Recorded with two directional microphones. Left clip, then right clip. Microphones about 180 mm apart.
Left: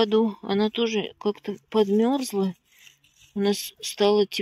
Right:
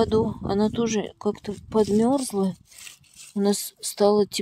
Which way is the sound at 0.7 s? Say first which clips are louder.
Even; 25° right (ahead or behind).